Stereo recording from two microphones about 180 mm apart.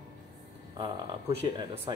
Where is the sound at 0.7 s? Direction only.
30° right (ahead or behind).